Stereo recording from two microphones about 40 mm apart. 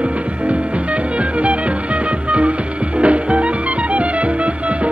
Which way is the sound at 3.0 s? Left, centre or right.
Right.